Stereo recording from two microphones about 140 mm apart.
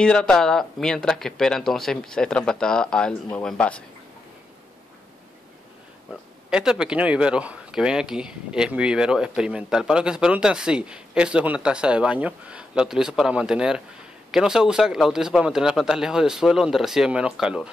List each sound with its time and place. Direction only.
0.0 s speech: 5° left (ahead or behind)
6.5 s speech: 5° right (ahead or behind)